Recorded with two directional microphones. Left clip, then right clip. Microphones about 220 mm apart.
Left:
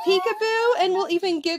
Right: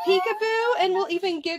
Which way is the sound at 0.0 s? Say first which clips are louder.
Left 1 dB; 55° left (ahead or behind).